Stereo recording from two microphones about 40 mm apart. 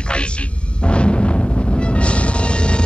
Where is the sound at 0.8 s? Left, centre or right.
Left.